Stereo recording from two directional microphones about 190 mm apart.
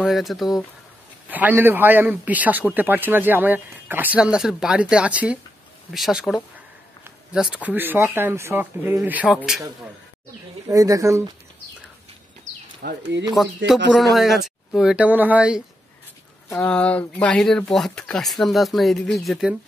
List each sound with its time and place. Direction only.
0.0 s a man's voice: centre (ahead or behind)
10.7 s a man's voice: 20° right (ahead or behind)
12.8 s speech: 55° right (ahead or behind)
13.6 s speech: 75° right (ahead or behind)
13.9 s speech: centre (ahead or behind)
16.4 s speech: 5° left (ahead or behind)